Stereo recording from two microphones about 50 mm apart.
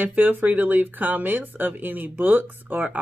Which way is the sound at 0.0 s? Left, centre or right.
Right.